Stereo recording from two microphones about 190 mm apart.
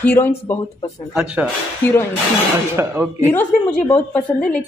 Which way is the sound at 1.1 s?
5° right (ahead or behind).